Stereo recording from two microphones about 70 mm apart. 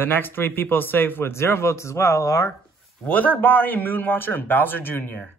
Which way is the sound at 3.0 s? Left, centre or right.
Left.